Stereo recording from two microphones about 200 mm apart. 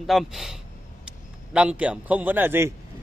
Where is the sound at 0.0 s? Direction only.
Centre (ahead or behind).